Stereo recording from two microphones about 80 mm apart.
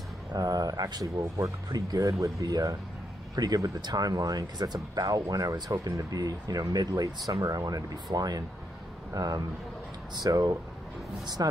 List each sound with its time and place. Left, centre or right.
0.3 s speech: right